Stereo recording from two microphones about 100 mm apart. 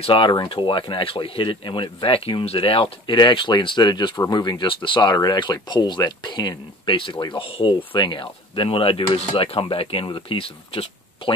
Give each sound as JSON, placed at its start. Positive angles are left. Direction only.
{"t": 0.0, "sound": "speech", "side_deg": 60}
{"t": 3.2, "sound": "speech", "side_deg": 50}
{"t": 5.1, "sound": "speech", "side_deg": 45}